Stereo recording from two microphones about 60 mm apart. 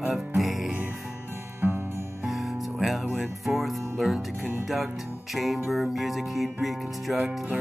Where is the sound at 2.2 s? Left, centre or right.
Centre.